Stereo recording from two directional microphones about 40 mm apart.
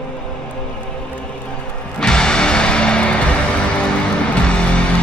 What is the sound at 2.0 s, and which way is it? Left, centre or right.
Music, centre.